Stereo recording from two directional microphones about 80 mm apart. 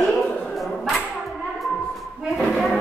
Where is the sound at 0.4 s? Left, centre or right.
Centre.